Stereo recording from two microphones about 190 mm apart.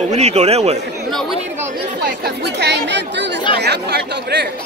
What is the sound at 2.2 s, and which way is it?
Speech, 60° right (ahead or behind).